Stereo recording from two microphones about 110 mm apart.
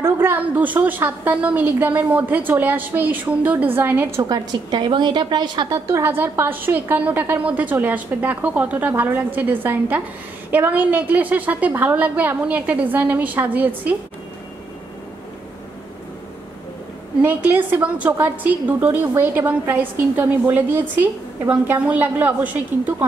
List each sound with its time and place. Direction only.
0.0 s a woman's voice: 20° right (ahead or behind)
4.2 s a woman's voice: 40° right (ahead or behind)
5.9 s a woman's voice: 20° right (ahead or behind)
17.2 s a woman's voice: 15° right (ahead or behind)